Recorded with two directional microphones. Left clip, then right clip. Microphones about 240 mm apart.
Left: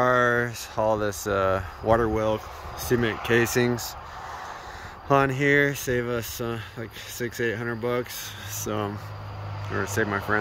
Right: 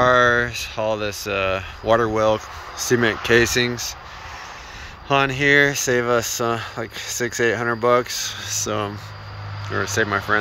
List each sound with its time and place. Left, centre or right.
0.0 s speech: centre
5.0 s speech: centre